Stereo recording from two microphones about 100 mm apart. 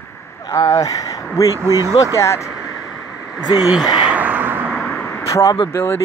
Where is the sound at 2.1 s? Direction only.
30° left (ahead or behind).